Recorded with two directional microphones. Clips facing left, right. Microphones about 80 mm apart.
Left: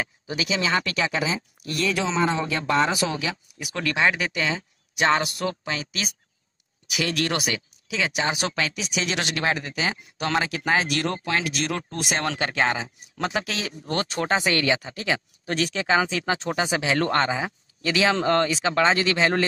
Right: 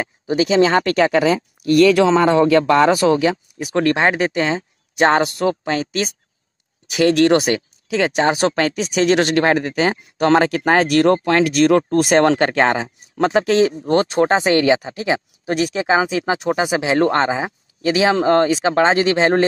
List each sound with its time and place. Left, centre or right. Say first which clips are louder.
0.0 s speech: right 10 dB; right